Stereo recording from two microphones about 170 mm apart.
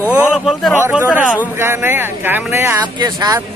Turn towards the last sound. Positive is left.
turn(degrees=-25)  # may be behind; listen again after turning